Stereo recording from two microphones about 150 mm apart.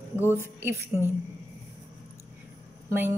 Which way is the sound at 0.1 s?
15° right (ahead or behind).